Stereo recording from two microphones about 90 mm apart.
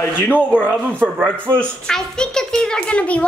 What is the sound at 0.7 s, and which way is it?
Speech, 20° right (ahead or behind).